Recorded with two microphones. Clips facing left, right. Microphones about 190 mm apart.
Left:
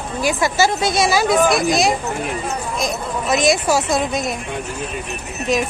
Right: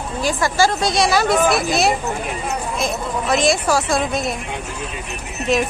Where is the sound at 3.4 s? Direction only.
20° left (ahead or behind).